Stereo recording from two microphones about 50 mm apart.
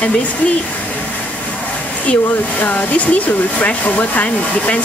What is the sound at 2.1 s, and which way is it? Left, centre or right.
Speech, left.